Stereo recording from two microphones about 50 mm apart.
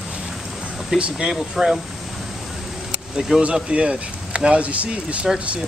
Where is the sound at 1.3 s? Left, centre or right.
Centre.